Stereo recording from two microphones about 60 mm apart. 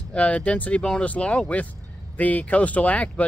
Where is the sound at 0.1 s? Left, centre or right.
Left.